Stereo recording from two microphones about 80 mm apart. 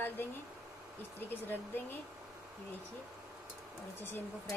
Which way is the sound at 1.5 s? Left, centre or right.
Left.